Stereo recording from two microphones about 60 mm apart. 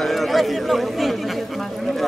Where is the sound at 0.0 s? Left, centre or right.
Centre.